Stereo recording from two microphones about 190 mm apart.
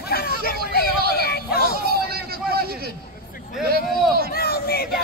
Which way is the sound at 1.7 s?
55° right (ahead or behind).